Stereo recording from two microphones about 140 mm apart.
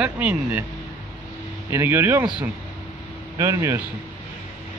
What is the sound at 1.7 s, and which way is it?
Speech, 15° right (ahead or behind).